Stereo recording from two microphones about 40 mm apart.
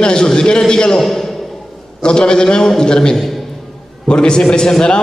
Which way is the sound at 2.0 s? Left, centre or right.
Left.